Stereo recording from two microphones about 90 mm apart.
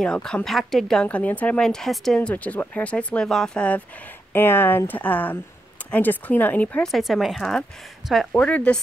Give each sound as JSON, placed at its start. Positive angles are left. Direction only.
{"t": 0.0, "sound": "speech", "side_deg": 5}
{"t": 1.0, "sound": "speech", "side_deg": 15}
{"t": 1.7, "sound": "speech", "side_deg": 5}
{"t": 2.2, "sound": "speech", "side_deg": 15}
{"t": 4.3, "sound": "speech", "side_deg": 25}
{"t": 6.9, "sound": "speech", "side_deg": 0}
{"t": 8.4, "sound": "speech", "side_deg": 15}